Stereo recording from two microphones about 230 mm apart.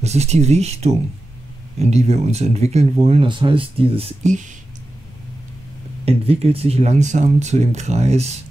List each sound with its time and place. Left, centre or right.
0.0 s speech: right
6.0 s speech: right